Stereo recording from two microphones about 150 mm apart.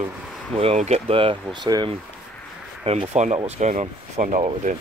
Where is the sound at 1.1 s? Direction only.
35° right (ahead or behind).